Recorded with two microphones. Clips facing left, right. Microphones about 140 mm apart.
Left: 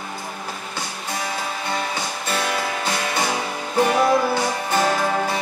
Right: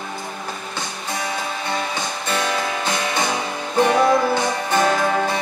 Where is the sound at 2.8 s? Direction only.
20° right (ahead or behind).